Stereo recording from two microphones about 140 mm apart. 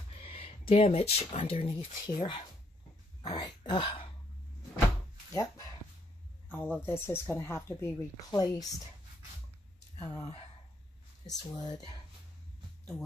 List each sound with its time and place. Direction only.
0.2 s speech: 40° left (ahead or behind)
5.3 s speech: 25° left (ahead or behind)
9.9 s speech: 15° left (ahead or behind)
11.2 s speech: 25° left (ahead or behind)